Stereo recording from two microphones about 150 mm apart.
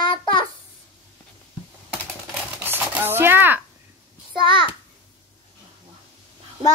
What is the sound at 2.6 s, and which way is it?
Chopping, 15° right (ahead or behind).